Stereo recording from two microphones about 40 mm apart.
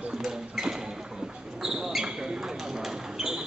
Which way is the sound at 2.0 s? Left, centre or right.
Centre.